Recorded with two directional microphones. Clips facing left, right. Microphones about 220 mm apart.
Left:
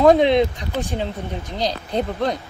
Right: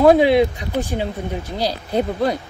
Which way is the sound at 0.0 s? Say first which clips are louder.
Right 1 dB; 5° right (ahead or behind).